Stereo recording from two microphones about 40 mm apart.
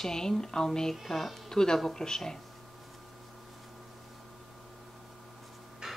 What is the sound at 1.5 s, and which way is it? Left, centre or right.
Speech, centre.